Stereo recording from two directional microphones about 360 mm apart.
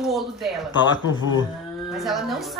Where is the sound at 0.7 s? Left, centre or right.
Left.